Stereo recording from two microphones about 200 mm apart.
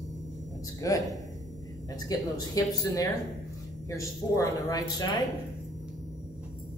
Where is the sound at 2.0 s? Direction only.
20° left (ahead or behind).